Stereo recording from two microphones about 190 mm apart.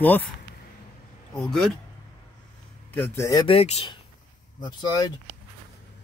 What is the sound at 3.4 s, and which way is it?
Speech, 30° left (ahead or behind).